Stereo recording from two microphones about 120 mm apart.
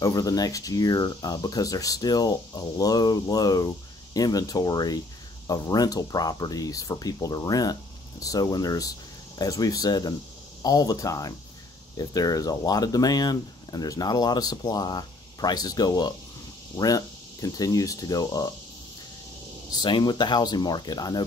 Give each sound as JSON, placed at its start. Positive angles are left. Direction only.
{"t": 0.0, "sound": "speech", "side_deg": 30}
{"t": 19.7, "sound": "speech", "side_deg": 35}